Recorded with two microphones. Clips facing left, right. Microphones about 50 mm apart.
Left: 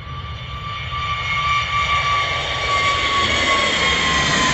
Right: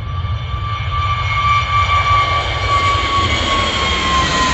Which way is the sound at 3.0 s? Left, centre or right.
Right.